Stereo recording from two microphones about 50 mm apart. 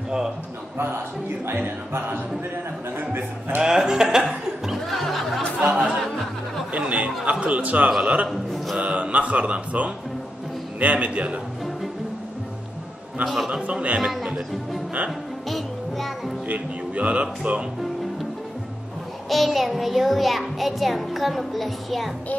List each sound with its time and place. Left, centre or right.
0.7 s speech: right
3.6 s speech: centre
4.8 s music: centre
5.6 s speech: right
6.7 s a man's voice: right
13.2 s a child's voice: centre
13.7 s speech: right
16.4 s a man's voice: right
19.2 s a child's voice: centre